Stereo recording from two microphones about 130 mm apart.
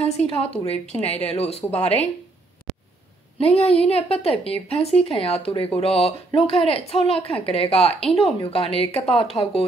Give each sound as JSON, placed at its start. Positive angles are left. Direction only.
{"t": 0.0, "sound": "speech", "side_deg": 55}
{"t": 3.3, "sound": "speech", "side_deg": 50}